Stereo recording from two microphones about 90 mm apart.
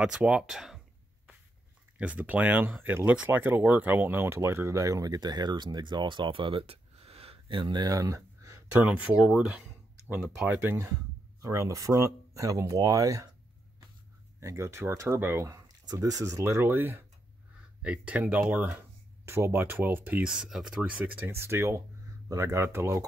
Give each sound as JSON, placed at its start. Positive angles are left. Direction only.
{"t": 0.0, "sound": "speech", "side_deg": -10}
{"t": 2.0, "sound": "speech", "side_deg": -15}
{"t": 8.8, "sound": "speech", "side_deg": -15}
{"t": 10.5, "sound": "speech", "side_deg": -25}
{"t": 11.4, "sound": "speech", "side_deg": -35}
{"t": 14.4, "sound": "speech", "side_deg": -35}
{"t": 15.4, "sound": "speech", "side_deg": -45}
{"t": 21.3, "sound": "speech", "side_deg": -30}